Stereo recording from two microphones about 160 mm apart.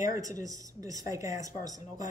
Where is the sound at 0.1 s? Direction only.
20° right (ahead or behind).